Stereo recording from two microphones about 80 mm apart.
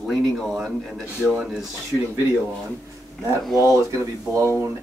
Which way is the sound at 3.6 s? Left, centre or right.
Right.